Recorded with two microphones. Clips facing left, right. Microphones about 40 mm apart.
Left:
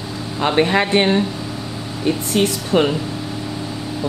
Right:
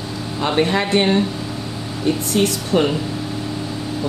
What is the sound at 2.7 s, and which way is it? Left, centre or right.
Speech, left.